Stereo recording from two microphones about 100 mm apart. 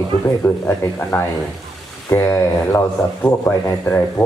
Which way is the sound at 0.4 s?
25° left (ahead or behind).